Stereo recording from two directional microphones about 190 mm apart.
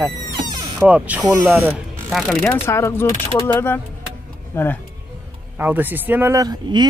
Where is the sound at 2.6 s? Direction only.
15° left (ahead or behind).